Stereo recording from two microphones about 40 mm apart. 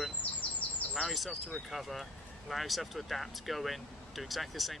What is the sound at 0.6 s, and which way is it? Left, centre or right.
Chirp, left.